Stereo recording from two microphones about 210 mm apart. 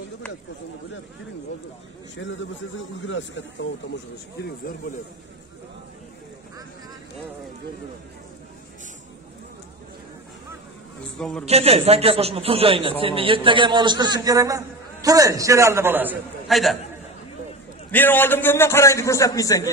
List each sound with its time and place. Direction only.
2.2 s speech: 60° left (ahead or behind)
11.0 s a man's voice: 5° left (ahead or behind)
11.4 s a man's voice: 30° right (ahead or behind); by 16.7 s centre (ahead or behind)
17.9 s a man's voice: 10° left (ahead or behind)